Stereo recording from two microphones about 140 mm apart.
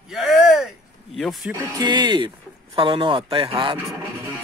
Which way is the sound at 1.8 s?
35° right (ahead or behind).